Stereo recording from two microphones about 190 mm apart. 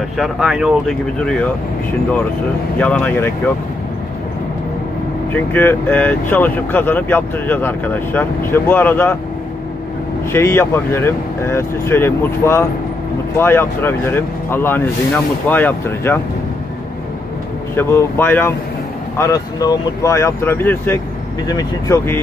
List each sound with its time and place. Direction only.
0.2 s speech: 5° right (ahead or behind)
2.8 s speech: 5° left (ahead or behind)
5.3 s speech: 10° left (ahead or behind)
10.3 s speech: 10° left (ahead or behind)
17.7 s speech: 15° left (ahead or behind)